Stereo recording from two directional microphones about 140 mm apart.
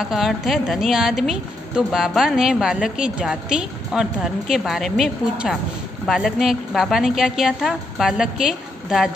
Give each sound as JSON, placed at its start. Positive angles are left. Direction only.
{"t": 0.0, "sound": "a woman's voice", "side_deg": 0}